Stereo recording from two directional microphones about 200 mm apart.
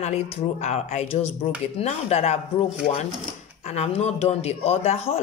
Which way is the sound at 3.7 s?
35° left (ahead or behind).